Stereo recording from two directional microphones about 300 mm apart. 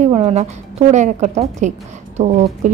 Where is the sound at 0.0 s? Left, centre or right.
Right.